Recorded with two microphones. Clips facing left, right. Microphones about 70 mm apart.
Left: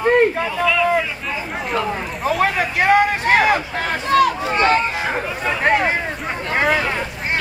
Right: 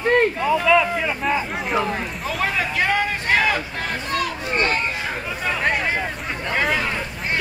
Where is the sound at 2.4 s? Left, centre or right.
Left.